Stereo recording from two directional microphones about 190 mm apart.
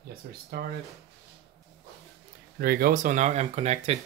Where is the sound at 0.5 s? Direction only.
55° right (ahead or behind).